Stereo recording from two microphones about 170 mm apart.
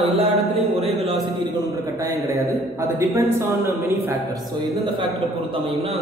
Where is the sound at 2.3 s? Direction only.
15° right (ahead or behind).